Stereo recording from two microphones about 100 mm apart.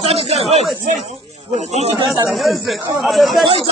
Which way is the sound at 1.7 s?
90° right.